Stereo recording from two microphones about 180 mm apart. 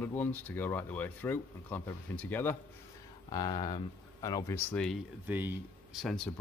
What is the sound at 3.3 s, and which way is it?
Speech, 25° left (ahead or behind).